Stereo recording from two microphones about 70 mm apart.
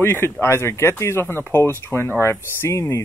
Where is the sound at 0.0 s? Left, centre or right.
Left.